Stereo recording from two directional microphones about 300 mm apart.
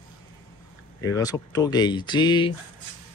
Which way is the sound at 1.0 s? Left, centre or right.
Centre.